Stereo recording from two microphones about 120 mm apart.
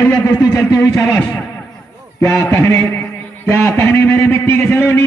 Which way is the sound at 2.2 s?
25° left (ahead or behind).